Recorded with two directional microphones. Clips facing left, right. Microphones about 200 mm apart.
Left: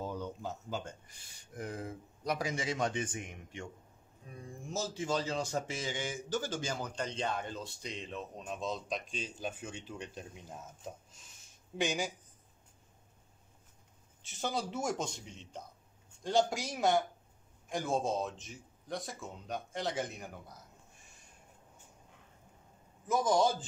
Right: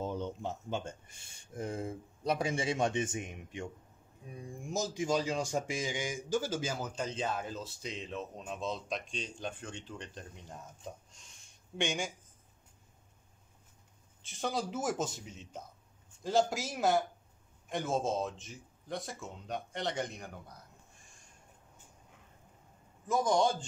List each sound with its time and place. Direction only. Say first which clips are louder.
0.0 s a man's voice: right 3 dB; 25° right (ahead or behind); by 12.1 s centre (ahead or behind)
14.2 s a man's voice: right 1 dB; centre (ahead or behind)
23.0 s a man's voice: even; 5° left (ahead or behind)